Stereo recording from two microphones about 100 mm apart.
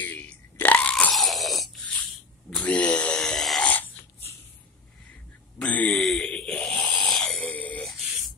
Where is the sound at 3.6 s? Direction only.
15° left (ahead or behind).